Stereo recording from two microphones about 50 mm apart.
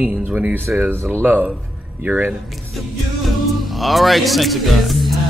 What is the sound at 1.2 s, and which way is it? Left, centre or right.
A man's voice, right.